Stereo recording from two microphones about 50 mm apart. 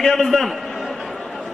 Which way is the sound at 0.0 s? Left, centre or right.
Centre.